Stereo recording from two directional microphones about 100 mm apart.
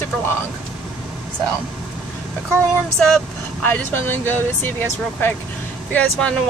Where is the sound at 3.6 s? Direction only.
20° left (ahead or behind).